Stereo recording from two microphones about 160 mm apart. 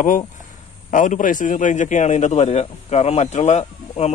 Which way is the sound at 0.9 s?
55° left (ahead or behind).